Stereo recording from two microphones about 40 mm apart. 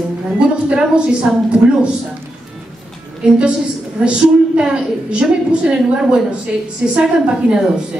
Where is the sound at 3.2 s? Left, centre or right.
Right.